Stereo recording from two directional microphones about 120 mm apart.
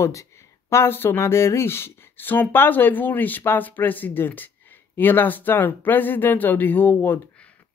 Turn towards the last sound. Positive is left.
turn(degrees=15)  # may be behind; listen again after turning